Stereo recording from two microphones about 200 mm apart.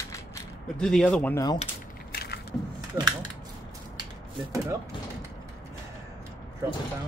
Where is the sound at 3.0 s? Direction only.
15° right (ahead or behind).